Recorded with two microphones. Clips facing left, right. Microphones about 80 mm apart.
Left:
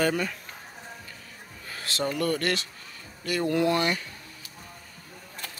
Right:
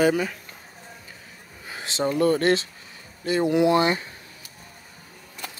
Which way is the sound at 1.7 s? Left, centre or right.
Centre.